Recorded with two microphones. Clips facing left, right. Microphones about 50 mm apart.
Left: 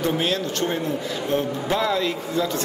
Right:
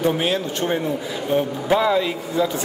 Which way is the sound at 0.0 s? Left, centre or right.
Centre.